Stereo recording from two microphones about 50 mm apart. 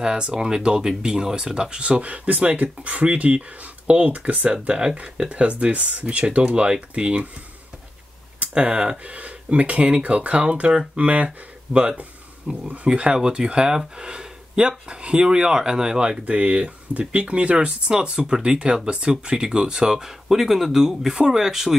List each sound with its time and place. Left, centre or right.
0.0 s speech: centre
8.4 s speech: right